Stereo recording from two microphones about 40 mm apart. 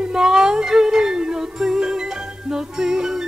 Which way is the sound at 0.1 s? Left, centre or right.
Centre.